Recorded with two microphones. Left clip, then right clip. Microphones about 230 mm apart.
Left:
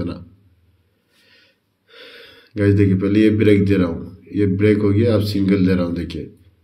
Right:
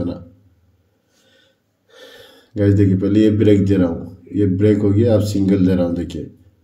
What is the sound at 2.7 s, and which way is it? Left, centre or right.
A man's voice, centre.